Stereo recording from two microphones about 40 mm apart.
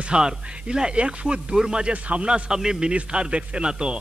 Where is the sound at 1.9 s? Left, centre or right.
Right.